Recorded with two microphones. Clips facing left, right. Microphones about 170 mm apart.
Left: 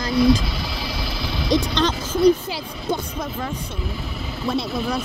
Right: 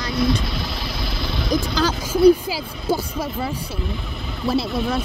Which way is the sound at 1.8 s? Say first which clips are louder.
Right 2 dB; 5° right (ahead or behind).